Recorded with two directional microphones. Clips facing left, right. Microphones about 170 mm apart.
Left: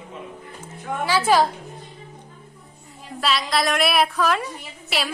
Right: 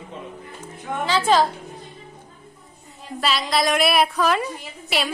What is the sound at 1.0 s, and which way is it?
Speech, 10° left (ahead or behind).